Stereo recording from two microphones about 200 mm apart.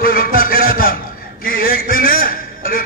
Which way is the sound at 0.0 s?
45° left (ahead or behind).